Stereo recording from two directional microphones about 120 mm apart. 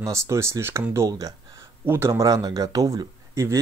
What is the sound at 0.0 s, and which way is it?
Speech, 25° right (ahead or behind).